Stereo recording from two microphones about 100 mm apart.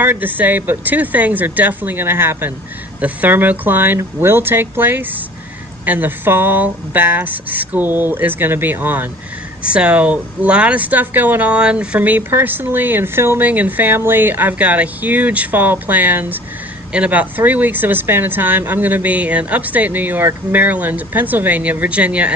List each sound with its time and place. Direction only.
0.0 s speech: 20° right (ahead or behind)